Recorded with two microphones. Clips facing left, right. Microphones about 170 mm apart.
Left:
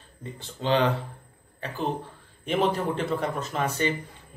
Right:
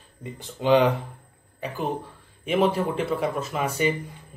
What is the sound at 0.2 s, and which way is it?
Speech, 15° right (ahead or behind).